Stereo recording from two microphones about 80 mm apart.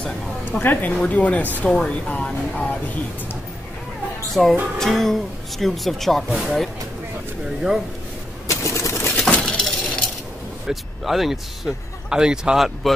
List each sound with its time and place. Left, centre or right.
0.0 s a woman's voice: left
4.3 s speech: centre
8.5 s a sound: left
9.4 s chink: centre
10.7 s speech: centre